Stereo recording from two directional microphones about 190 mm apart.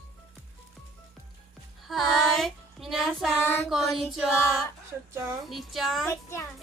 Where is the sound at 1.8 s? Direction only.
Centre (ahead or behind).